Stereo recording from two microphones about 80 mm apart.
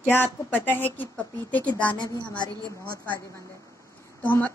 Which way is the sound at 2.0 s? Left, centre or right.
Left.